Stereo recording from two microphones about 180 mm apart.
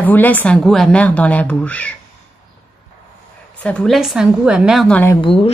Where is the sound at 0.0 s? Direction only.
10° left (ahead or behind).